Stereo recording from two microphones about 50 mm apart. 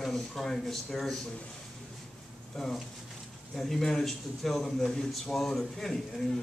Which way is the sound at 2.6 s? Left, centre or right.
Centre.